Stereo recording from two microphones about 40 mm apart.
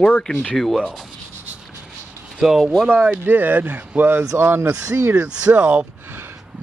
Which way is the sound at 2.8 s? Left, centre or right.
Right.